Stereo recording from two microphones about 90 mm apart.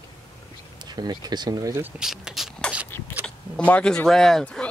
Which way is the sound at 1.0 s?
50° right (ahead or behind).